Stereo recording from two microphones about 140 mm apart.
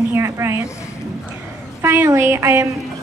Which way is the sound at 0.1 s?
20° right (ahead or behind).